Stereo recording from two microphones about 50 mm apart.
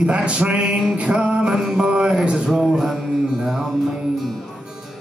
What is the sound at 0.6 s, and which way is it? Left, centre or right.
Speech, centre.